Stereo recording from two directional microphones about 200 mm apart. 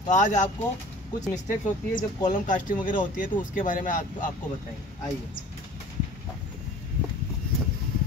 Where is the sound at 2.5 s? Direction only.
40° left (ahead or behind).